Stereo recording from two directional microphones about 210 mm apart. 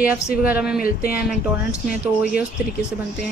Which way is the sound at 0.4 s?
5° right (ahead or behind).